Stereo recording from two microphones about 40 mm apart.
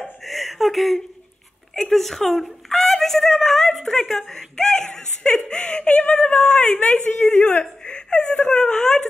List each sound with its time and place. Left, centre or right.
0.0 s a sound: centre
1.8 s a woman's voice: centre; by 7.0 s left
7.1 s a woman's voice: left
7.4 s speech: left
8.1 s speech: centre